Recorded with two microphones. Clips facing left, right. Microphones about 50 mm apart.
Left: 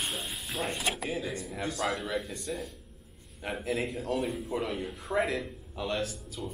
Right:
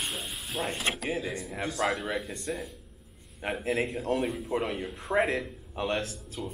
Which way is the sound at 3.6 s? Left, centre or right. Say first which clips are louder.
Right 2 dB; right.